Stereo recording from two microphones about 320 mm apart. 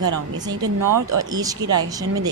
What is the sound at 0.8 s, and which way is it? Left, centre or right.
Speech, right.